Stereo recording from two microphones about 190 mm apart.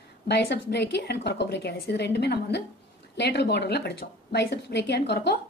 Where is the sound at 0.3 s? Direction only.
60° left (ahead or behind).